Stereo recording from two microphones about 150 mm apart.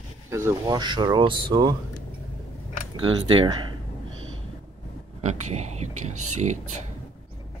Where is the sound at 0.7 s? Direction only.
30° right (ahead or behind).